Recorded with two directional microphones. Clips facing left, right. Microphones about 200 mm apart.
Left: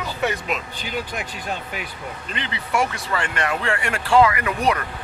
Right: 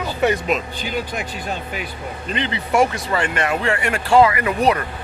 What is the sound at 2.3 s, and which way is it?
Speech, 25° right (ahead or behind).